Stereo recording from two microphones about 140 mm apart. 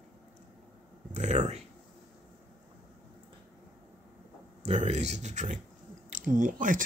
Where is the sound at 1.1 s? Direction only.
55° right (ahead or behind).